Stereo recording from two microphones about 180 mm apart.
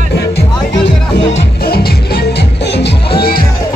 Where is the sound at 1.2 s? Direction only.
85° left.